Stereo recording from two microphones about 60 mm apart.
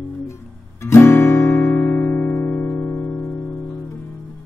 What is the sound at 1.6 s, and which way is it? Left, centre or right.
Music, left.